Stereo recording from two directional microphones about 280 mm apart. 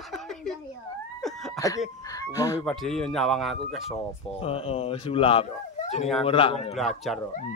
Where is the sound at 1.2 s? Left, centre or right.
Centre.